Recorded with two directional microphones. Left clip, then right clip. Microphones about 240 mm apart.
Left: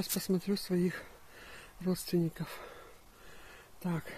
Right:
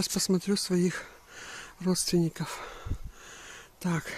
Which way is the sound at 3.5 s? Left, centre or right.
Right.